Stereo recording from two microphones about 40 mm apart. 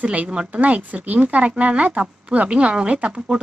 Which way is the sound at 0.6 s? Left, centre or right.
Right.